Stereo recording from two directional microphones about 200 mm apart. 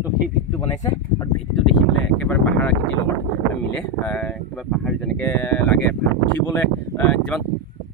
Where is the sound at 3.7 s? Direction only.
5° left (ahead or behind).